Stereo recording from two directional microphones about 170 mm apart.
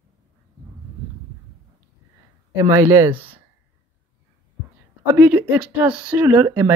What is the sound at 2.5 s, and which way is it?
Speech, 20° right (ahead or behind).